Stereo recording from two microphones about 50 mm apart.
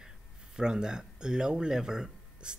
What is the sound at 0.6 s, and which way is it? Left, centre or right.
Speech, centre.